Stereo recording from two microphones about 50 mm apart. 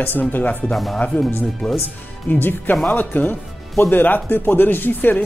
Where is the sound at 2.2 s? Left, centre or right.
Left.